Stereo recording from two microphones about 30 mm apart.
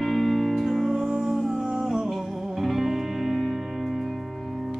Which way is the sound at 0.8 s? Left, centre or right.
Centre.